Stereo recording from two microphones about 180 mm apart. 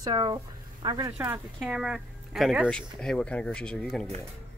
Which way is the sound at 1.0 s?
15° right (ahead or behind).